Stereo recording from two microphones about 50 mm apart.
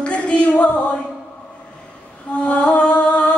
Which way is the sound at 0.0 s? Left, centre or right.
Left.